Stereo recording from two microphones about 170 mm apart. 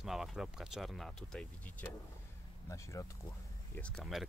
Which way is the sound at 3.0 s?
20° left (ahead or behind).